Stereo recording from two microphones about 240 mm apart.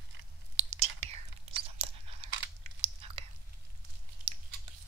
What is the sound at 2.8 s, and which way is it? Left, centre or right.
Whispering, right.